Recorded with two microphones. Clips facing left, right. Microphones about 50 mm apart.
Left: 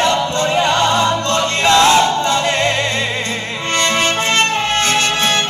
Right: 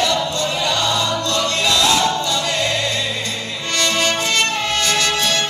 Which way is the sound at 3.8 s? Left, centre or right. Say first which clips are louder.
Left 2 dB; left.